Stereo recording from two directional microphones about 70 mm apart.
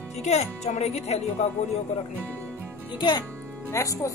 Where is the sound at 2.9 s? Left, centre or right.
Left.